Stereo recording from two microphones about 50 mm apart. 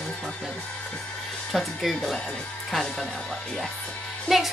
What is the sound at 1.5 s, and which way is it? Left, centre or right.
Speech, centre.